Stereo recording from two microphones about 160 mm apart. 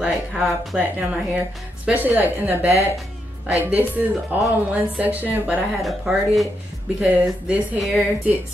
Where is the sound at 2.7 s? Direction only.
20° left (ahead or behind).